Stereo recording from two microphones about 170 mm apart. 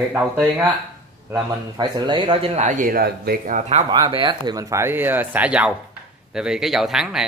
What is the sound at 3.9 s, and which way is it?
Speech, 25° right (ahead or behind).